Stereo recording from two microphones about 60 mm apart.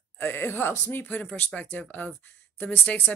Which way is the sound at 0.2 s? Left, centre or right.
Left.